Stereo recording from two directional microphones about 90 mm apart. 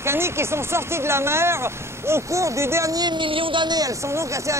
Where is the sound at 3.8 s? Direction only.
35° right (ahead or behind).